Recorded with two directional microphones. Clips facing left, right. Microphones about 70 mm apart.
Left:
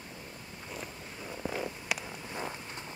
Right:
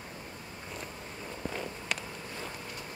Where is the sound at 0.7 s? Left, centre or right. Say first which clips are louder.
Even; centre.